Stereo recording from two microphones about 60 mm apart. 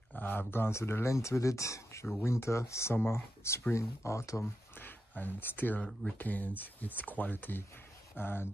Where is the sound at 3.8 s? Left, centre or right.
Left.